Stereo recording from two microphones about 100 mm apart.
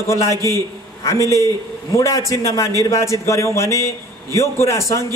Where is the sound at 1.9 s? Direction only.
30° left (ahead or behind).